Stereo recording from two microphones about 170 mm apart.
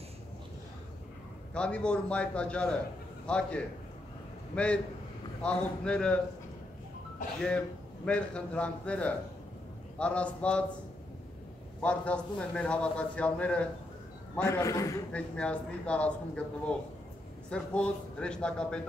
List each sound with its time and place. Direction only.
1.5 s a man's voice: 5° left (ahead or behind)
7.4 s a man's voice: 5° left (ahead or behind)
11.8 s a man's voice: 5° left (ahead or behind)
14.4 s a man's voice: 20° left (ahead or behind)
15.1 s a man's voice: 5° left (ahead or behind)